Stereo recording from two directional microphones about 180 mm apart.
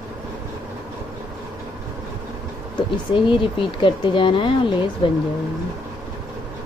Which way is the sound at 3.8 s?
25° left (ahead or behind).